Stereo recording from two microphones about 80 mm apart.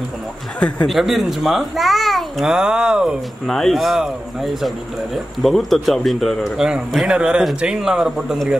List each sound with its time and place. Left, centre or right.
0.6 s speech: centre
0.8 s a child's voice: centre
3.4 s a man's voice: centre